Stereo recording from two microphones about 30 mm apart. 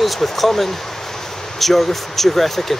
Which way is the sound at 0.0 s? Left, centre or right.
Centre.